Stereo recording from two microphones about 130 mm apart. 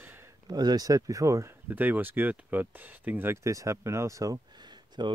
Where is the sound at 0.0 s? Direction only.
15° right (ahead or behind).